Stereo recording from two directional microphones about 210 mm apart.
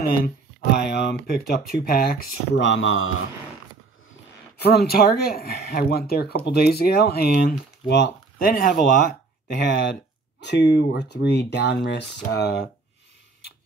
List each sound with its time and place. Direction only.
0.0 s speech: 45° left (ahead or behind); by 3.2 s 70° left (ahead or behind)
4.6 s speech: 50° left (ahead or behind)
9.5 s speech: 55° left (ahead or behind)